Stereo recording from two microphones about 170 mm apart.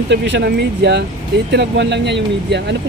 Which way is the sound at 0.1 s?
90° right.